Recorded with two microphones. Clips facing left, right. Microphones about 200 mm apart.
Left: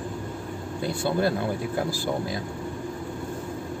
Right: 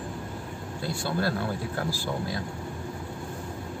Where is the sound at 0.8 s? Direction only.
20° left (ahead or behind).